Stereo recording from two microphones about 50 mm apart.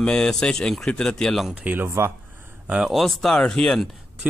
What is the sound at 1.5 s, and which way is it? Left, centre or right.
Speech, right.